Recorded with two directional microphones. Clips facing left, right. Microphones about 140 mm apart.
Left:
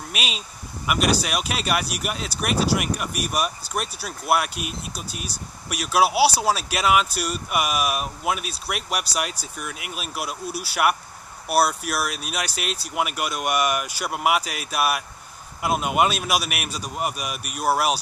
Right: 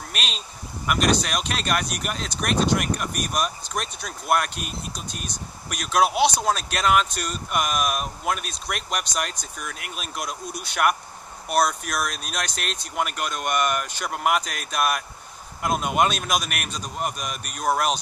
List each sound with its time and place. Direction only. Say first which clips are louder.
0.1 s speech: left 3 dB; 5° left (ahead or behind)